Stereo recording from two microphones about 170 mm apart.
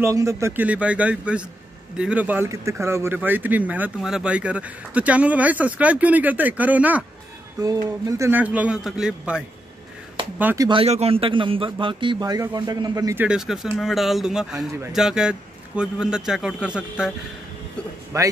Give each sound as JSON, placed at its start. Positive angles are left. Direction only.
{"t": 0.0, "sound": "speech", "side_deg": -15}
{"t": 10.4, "sound": "speech", "side_deg": -15}
{"t": 10.7, "sound": "a man's voice", "side_deg": -35}
{"t": 13.2, "sound": "a man's voice", "side_deg": -5}
{"t": 18.1, "sound": "a man's voice", "side_deg": -20}